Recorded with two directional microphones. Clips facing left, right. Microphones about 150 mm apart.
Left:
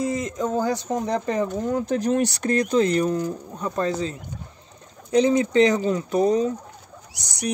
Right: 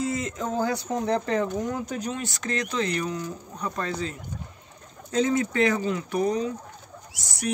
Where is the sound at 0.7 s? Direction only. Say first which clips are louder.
Left 1 dB; 20° left (ahead or behind).